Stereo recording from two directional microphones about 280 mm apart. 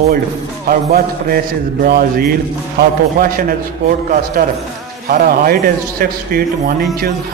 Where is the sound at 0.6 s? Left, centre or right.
Right.